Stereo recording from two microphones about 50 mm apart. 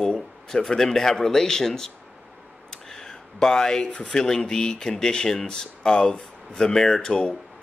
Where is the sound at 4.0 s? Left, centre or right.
Centre.